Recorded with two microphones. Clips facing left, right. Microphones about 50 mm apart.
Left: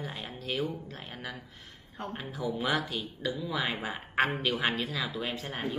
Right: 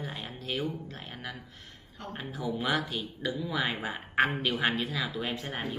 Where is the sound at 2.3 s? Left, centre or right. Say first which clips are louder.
Even; centre.